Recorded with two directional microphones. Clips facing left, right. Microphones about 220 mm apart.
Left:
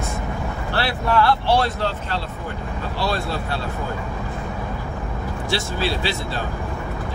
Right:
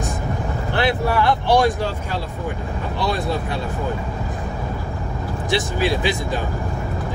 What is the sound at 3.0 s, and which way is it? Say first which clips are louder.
Speech: right 2 dB; 20° right (ahead or behind).